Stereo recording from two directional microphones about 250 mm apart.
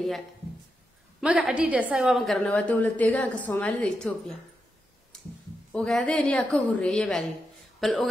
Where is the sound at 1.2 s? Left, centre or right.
Centre.